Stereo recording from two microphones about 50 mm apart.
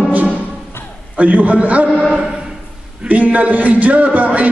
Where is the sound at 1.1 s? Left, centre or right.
Right.